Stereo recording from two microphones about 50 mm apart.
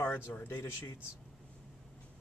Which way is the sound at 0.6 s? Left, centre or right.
Left.